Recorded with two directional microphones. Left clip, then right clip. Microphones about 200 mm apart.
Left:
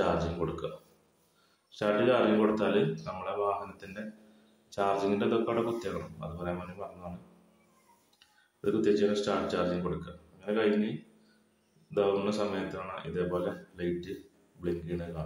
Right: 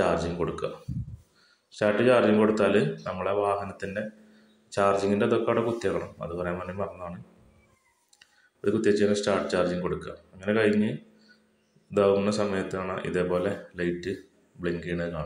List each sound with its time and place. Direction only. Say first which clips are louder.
0.0 s speech: right 4 dB; 20° right (ahead or behind)
1.7 s speech: right 5 dB; 20° right (ahead or behind)
8.2 s speech: right 5 dB; 20° right (ahead or behind)
11.9 s speech: right 6 dB; 20° right (ahead or behind)